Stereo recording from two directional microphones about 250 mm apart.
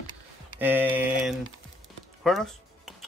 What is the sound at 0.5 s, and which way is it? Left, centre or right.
Mantra, centre.